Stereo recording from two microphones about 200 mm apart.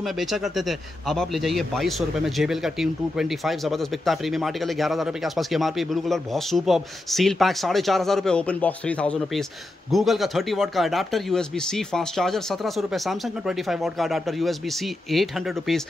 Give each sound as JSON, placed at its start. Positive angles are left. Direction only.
{"t": 0.0, "sound": "a man's voice", "side_deg": 0}